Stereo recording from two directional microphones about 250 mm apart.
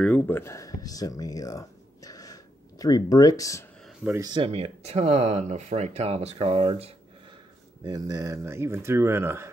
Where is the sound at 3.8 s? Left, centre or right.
Centre.